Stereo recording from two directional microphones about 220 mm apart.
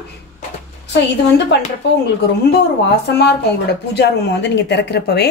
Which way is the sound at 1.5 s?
50° left (ahead or behind).